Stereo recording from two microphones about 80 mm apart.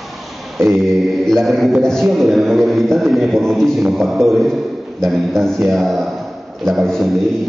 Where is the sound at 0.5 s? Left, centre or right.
Centre.